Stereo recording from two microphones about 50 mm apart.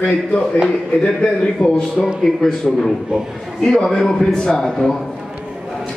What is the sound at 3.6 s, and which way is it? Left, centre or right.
A man's voice, centre.